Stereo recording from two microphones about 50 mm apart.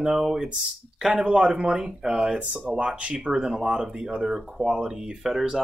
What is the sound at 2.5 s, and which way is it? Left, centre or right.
Speech, right.